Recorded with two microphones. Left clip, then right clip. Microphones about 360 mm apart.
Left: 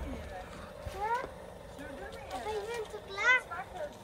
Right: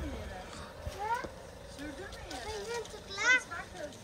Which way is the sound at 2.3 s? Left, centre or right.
Left.